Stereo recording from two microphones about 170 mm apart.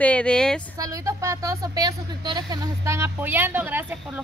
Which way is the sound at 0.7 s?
20° right (ahead or behind).